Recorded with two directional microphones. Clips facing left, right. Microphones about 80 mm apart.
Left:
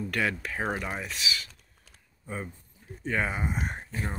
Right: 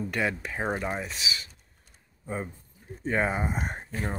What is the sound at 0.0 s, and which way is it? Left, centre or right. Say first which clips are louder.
Speech: even; centre.